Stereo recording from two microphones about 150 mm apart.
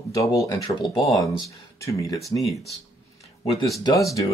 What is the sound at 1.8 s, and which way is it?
Speech, 20° left (ahead or behind).